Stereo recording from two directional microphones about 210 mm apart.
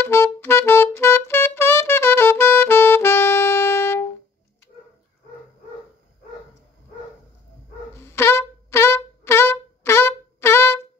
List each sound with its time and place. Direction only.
0.0 s music: 10° left (ahead or behind)
8.0 s wind instrument: 10° left (ahead or behind)